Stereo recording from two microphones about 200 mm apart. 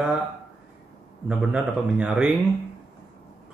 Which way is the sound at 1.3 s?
5° right (ahead or behind).